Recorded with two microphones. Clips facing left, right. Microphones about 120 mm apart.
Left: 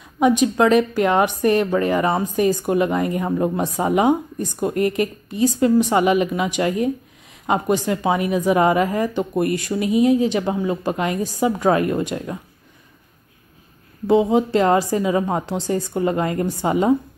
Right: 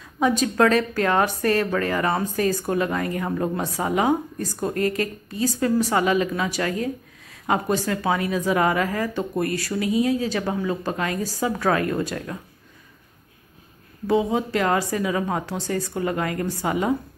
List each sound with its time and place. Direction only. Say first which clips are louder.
0.2 s speech: left 3 dB; 15° left (ahead or behind)
14.0 s speech: left 5 dB; 25° left (ahead or behind)